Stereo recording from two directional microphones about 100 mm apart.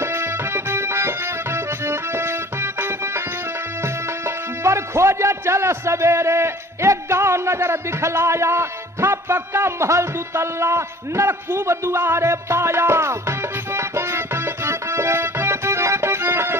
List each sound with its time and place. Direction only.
0.0 s music: 25° right (ahead or behind)
4.6 s a man's voice: 30° right (ahead or behind)